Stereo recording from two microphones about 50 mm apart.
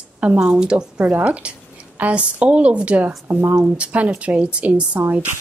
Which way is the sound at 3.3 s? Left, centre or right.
Right.